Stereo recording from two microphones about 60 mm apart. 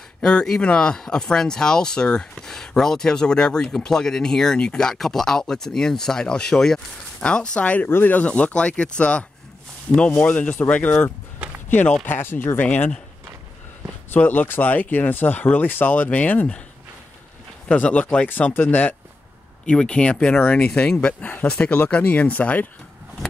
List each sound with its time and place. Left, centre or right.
0.2 s speech: centre
12.1 s speech: left
14.1 s speech: left
17.6 s speech: left
19.6 s speech: centre